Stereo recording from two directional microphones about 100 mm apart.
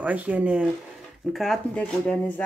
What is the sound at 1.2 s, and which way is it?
Speech, centre (ahead or behind).